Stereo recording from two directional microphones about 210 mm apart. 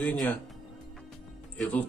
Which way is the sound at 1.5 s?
5° left (ahead or behind).